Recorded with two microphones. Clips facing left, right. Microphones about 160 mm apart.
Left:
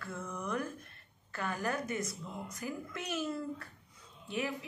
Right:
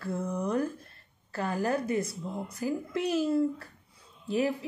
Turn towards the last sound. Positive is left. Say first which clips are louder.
# right 9 dB
turn(degrees=-35)  # may be behind; listen again after turning